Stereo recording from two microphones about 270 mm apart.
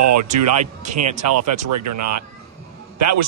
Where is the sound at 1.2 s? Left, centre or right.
Right.